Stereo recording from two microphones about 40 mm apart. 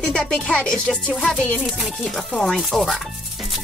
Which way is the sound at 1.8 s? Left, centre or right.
Centre.